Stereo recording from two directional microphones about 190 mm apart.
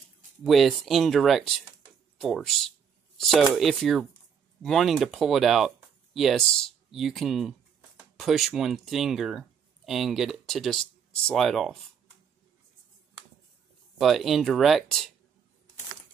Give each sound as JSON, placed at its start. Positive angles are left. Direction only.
{"t": 0.4, "sound": "speech", "side_deg": 0}
{"t": 13.9, "sound": "speech", "side_deg": 0}